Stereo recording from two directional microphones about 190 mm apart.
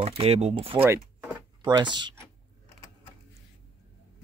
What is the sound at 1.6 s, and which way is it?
Speech, 25° right (ahead or behind).